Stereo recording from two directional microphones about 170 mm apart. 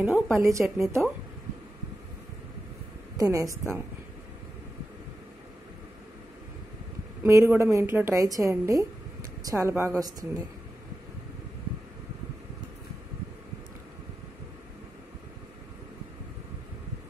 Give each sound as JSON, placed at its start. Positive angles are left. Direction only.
{"t": 0.0, "sound": "a woman's voice", "side_deg": -15}
{"t": 3.2, "sound": "speech", "side_deg": -20}
{"t": 7.2, "sound": "a woman's voice", "side_deg": -15}